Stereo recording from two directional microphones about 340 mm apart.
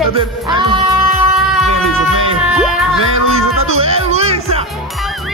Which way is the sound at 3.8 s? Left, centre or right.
Centre.